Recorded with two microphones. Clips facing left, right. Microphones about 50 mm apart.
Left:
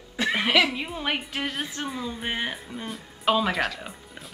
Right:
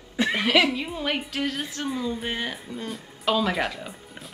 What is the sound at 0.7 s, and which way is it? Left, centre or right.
Speech, centre.